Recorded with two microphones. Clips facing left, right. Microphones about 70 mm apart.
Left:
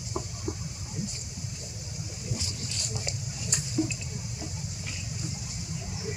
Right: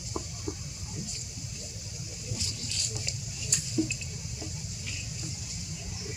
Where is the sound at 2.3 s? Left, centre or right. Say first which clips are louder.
Left 2 dB; left.